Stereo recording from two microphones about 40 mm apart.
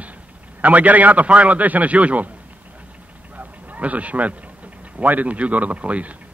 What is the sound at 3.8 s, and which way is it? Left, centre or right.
A man's voice, right.